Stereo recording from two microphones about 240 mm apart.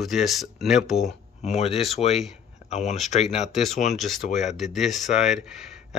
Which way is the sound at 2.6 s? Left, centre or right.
Left.